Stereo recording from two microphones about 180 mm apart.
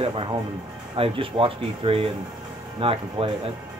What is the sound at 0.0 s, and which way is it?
Speech, 30° right (ahead or behind).